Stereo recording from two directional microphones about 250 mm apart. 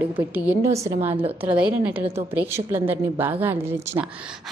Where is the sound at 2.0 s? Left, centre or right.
Right.